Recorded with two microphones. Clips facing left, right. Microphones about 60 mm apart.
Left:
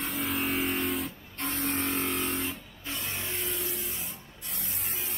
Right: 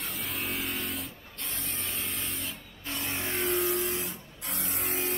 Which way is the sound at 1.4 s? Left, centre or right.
Left.